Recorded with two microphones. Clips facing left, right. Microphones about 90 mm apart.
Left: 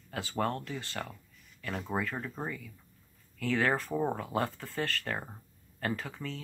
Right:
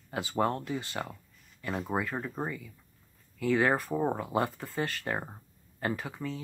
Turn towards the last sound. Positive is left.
turn(degrees=-10)  # may be behind; listen again after turning